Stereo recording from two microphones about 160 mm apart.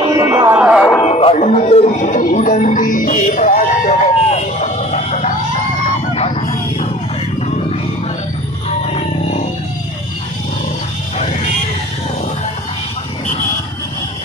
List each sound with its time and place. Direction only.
0.1 s speech: 20° right (ahead or behind)
1.0 s music: 40° left (ahead or behind)
8.6 s a sound: 40° left (ahead or behind)